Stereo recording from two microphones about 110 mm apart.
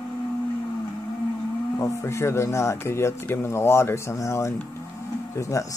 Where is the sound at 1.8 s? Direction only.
25° left (ahead or behind).